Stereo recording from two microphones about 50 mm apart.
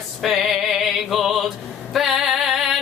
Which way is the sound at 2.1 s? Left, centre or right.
Centre.